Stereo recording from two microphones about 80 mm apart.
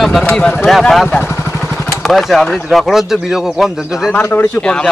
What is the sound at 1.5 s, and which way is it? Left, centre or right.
Vehicle, centre.